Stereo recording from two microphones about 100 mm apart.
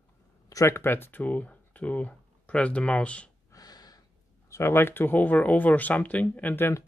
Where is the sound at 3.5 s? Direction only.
40° left (ahead or behind).